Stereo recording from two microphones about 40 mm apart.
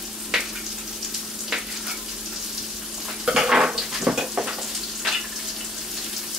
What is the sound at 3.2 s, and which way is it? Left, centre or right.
Frying, centre.